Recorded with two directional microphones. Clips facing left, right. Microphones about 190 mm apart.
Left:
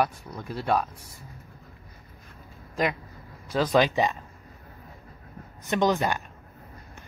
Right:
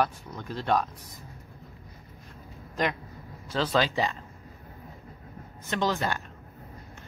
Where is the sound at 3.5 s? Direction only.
15° left (ahead or behind).